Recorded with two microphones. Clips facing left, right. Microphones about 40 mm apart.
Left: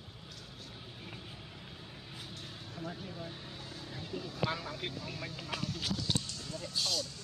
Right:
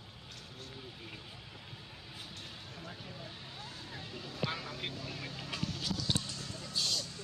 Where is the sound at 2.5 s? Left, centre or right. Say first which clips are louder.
Left 4 dB; right.